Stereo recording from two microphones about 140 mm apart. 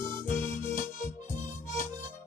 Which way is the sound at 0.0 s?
20° left (ahead or behind).